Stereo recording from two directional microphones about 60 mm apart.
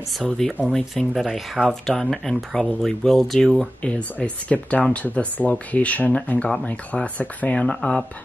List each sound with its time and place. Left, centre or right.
0.2 s speech: centre
3.8 s speech: left